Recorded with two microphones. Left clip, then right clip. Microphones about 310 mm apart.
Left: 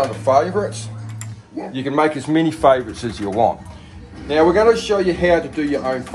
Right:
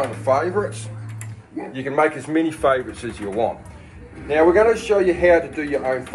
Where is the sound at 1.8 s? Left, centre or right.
Left.